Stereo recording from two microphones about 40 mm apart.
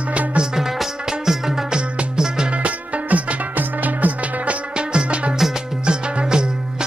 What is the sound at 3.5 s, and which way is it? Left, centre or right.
Music, right.